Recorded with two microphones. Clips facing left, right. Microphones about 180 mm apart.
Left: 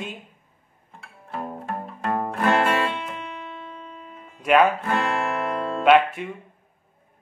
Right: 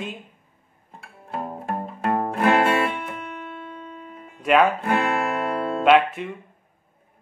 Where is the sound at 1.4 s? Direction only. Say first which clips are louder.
Right 3 dB; 25° right (ahead or behind).